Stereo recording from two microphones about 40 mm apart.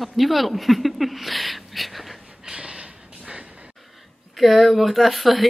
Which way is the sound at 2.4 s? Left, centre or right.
Right.